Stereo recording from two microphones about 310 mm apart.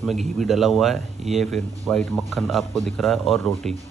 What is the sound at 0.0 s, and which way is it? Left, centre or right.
Speech, centre.